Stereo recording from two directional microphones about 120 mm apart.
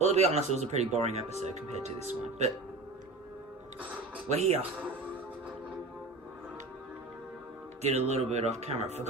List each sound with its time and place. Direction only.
0.0 s speech: 60° right (ahead or behind)
4.3 s speech: 65° right (ahead or behind)
7.8 s speech: 65° right (ahead or behind)